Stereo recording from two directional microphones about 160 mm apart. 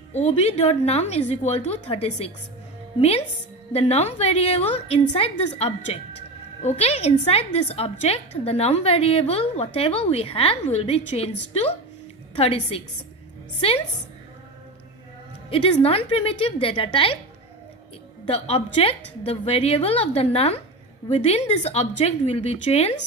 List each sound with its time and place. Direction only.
0.1 s a woman's voice: 40° left (ahead or behind)
15.5 s a woman's voice: 35° left (ahead or behind)
18.3 s a woman's voice: 40° left (ahead or behind)